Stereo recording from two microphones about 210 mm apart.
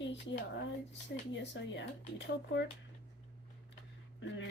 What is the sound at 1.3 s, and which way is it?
A woman's voice, 60° left (ahead or behind).